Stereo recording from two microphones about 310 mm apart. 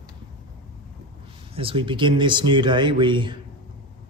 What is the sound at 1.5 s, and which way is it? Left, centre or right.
Speech, centre.